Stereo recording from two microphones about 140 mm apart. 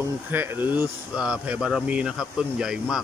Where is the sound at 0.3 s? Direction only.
15° right (ahead or behind).